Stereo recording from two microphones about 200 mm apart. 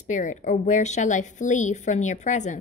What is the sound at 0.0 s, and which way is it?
Speech, 35° left (ahead or behind).